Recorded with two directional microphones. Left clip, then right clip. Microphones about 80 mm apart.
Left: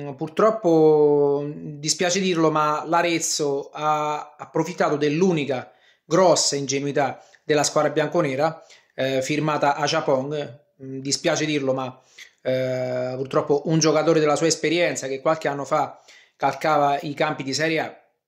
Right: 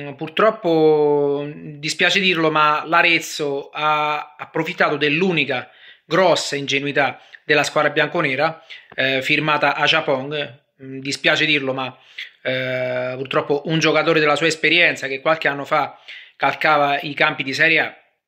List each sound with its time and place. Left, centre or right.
0.2 s speech: left
1.0 s speech: centre
1.3 s speech: left